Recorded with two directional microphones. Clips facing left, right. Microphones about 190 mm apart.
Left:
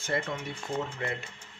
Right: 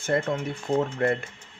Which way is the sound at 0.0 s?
50° right (ahead or behind).